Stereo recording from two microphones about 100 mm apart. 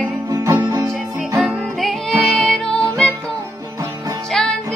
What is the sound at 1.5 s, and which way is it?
Music, centre (ahead or behind).